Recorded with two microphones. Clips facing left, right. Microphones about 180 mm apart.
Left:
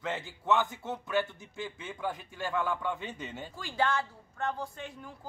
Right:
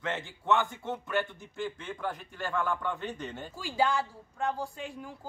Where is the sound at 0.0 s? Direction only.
Centre (ahead or behind).